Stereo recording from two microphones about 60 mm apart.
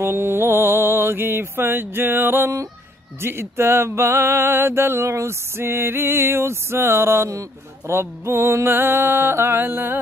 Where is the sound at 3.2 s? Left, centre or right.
Right.